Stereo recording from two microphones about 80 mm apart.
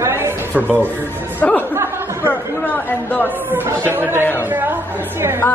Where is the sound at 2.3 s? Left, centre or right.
Left.